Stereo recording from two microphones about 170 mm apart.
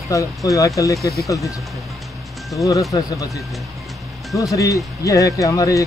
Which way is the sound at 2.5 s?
20° left (ahead or behind).